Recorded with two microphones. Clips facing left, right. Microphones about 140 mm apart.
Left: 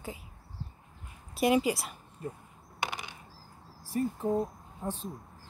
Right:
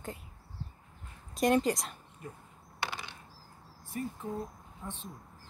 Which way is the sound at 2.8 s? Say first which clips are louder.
Left 2 dB; 15° left (ahead or behind).